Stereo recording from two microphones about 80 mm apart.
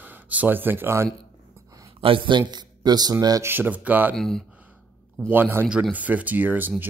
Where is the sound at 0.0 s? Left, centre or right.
Right.